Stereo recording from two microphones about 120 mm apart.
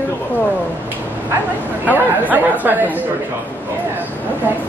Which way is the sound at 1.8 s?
15° right (ahead or behind).